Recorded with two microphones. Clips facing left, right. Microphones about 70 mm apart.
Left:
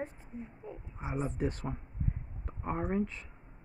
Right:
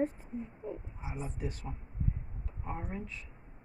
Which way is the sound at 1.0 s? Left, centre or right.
Left.